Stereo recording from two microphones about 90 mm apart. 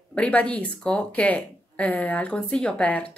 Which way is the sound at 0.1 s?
15° left (ahead or behind).